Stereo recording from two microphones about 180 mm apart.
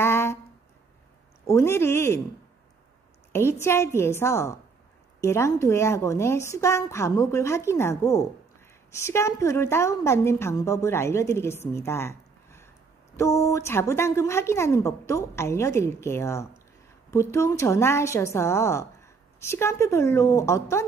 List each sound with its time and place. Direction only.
0.0 s a sound: 15° left (ahead or behind)
1.4 s a woman's voice: 15° left (ahead or behind)
3.3 s a woman's voice: 15° left (ahead or behind)